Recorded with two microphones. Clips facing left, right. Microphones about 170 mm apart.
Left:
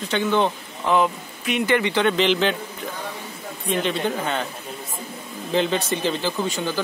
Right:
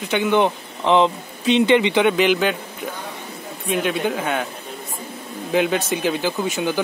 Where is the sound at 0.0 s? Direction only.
15° right (ahead or behind).